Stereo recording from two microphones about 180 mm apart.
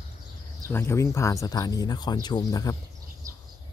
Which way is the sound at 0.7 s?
15° left (ahead or behind).